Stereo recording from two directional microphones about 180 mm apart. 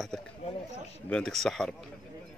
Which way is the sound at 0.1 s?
5° left (ahead or behind).